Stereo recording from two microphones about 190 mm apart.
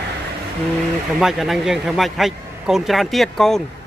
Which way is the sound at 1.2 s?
Centre (ahead or behind).